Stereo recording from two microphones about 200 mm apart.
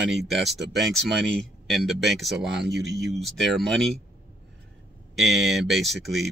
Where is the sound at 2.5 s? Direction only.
60° right (ahead or behind).